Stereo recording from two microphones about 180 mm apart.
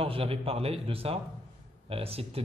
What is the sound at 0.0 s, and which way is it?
Speech, 30° right (ahead or behind).